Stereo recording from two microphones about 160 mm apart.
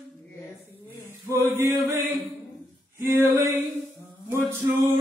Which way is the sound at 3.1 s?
15° right (ahead or behind).